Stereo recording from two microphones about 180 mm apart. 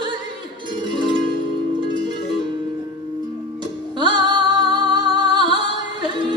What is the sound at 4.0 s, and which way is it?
Music, 25° right (ahead or behind).